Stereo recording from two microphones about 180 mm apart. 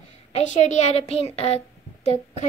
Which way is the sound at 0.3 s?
40° left (ahead or behind).